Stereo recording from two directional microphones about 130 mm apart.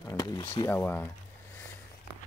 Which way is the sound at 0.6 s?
15° left (ahead or behind).